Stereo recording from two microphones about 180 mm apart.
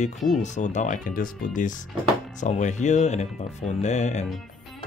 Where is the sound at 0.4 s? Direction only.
40° left (ahead or behind).